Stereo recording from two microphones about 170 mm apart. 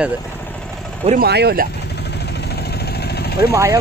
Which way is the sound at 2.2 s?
75° left (ahead or behind).